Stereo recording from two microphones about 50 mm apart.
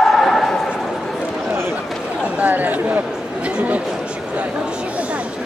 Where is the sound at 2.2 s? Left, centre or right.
Right.